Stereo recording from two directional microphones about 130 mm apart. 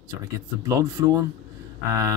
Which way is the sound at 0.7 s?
25° right (ahead or behind).